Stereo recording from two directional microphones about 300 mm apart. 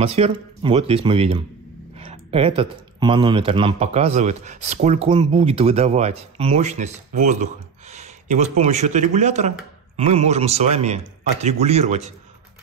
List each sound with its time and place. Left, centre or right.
0.0 s speech: centre